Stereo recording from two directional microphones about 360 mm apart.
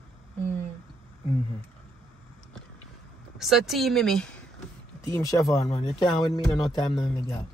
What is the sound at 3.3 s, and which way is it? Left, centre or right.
Speech, centre.